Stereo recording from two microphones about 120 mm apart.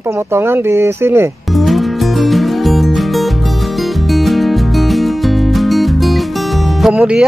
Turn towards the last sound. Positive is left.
turn(degrees=-5)  # may be behind; listen again after turning